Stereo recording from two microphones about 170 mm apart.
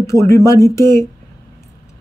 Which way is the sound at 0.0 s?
15° left (ahead or behind).